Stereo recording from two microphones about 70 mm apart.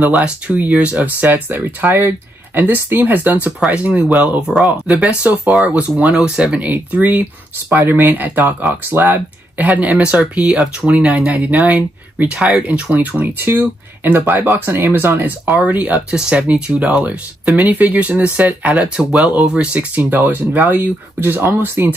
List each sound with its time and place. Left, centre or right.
0.0 s speech: right
4.5 s speech: centre
5.0 s speech: centre
6.7 s speech: right